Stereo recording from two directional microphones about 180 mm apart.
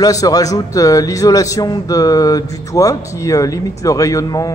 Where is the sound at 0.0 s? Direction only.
20° left (ahead or behind).